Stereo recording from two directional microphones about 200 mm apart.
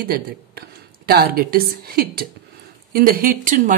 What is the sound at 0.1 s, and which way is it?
A woman's voice, 50° right (ahead or behind).